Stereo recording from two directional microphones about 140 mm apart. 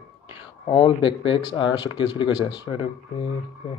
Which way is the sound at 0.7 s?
35° left (ahead or behind).